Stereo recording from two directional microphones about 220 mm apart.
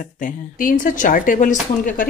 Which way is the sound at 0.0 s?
40° left (ahead or behind).